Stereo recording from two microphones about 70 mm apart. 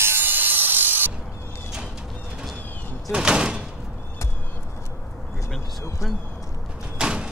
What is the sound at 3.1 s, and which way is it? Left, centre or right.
Door, centre.